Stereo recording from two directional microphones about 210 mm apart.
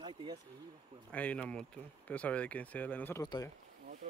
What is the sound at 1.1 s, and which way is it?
Speech, 5° left (ahead or behind).